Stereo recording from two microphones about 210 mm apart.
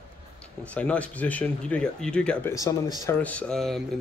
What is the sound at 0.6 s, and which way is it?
Speech, 5° left (ahead or behind).